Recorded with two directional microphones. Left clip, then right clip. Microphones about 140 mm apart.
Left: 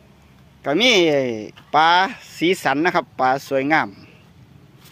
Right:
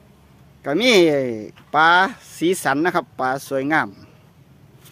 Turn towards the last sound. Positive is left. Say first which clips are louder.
# left 2 dB
turn(degrees=-20)  # may be behind; listen again after turning